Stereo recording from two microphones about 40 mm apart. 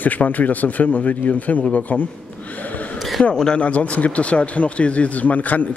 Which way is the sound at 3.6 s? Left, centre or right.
Left.